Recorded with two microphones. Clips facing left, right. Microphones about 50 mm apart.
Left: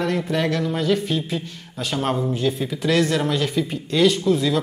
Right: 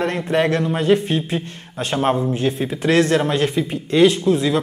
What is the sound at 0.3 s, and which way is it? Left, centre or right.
Speech, right.